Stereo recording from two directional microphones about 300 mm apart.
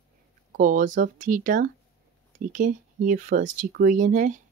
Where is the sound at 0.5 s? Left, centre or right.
Right.